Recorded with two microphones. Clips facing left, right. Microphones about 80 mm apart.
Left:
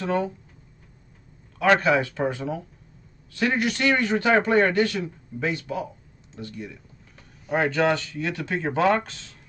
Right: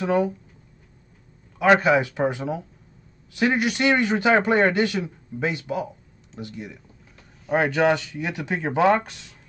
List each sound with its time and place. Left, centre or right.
0.0 s a man's voice: centre
1.6 s a man's voice: centre